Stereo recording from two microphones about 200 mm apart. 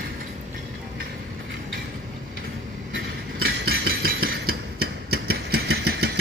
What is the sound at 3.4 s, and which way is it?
Hammer, 50° right (ahead or behind).